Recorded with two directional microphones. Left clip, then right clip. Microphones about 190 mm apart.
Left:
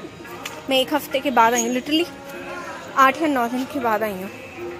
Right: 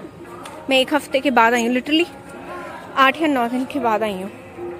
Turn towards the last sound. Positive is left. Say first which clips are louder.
# right 2 dB
turn(degrees=-15)  # may be behind; listen again after turning